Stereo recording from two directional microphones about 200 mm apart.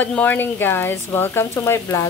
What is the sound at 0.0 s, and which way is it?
Speech, 10° left (ahead or behind).